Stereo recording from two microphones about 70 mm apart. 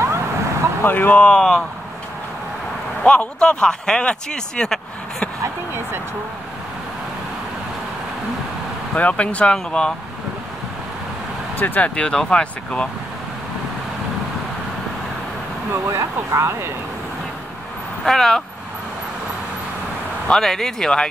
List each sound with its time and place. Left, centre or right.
0.0 s vehicle: right
0.8 s speech: left
3.0 s speech: centre
8.9 s speech: centre
11.6 s speech: left
11.9 s speech: centre
15.7 s speech: right
18.0 s speech: centre
20.2 s speech: centre